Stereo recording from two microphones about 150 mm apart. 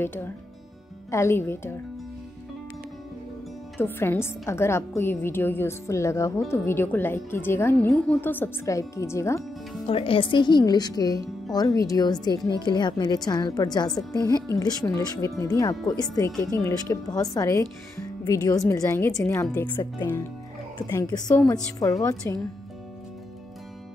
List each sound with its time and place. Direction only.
0.0 s a woman's voice: 15° left (ahead or behind)
3.7 s a woman's voice: 15° left (ahead or behind)
9.8 s a woman's voice: 40° left (ahead or behind); by 19.8 s 10° left (ahead or behind)
19.8 s a woman's voice: 25° left (ahead or behind)